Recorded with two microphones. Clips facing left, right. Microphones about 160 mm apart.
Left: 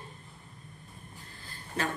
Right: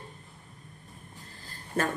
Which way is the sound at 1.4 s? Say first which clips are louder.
Right 4 dB; 50° right (ahead or behind).